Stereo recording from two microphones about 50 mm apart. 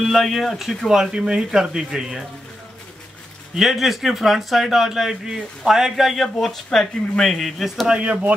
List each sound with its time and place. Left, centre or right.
0.0 s speech: centre
0.8 s speech: centre
3.5 s speech: centre
6.4 s speech: centre
7.9 s speech: right